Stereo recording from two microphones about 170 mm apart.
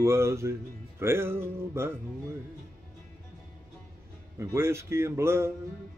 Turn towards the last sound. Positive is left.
turn(degrees=-15)  # may be behind; listen again after turning